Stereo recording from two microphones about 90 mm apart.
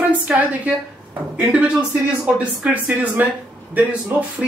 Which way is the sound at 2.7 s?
20° right (ahead or behind).